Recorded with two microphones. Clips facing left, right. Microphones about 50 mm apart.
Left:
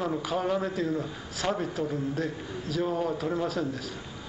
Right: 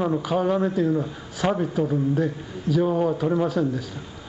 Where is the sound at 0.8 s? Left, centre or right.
Right.